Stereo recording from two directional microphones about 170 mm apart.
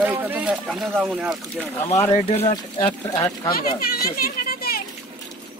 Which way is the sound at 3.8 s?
60° left (ahead or behind).